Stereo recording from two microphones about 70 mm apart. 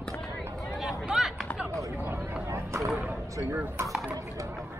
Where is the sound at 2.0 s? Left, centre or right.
Right.